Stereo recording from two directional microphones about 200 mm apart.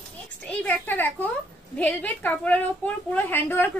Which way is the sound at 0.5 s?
10° left (ahead or behind).